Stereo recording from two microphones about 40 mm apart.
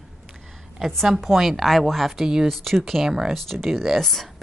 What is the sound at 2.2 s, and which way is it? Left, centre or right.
Speech, centre.